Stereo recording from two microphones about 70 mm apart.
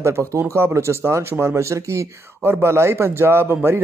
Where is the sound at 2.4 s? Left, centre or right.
Right.